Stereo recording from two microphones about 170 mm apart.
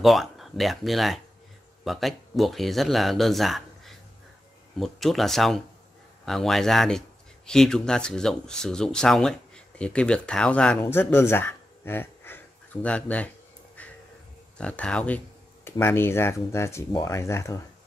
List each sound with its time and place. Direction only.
0.0 s speech: centre (ahead or behind)
13.8 s a sound: 10° left (ahead or behind)
14.6 s speech: 5° left (ahead or behind)